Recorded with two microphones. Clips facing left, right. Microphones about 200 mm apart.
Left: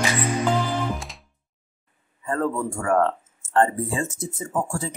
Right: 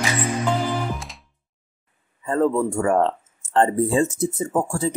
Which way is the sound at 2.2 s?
25° right (ahead or behind).